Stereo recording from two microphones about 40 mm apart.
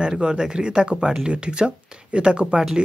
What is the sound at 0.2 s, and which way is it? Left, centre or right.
A man's voice, centre.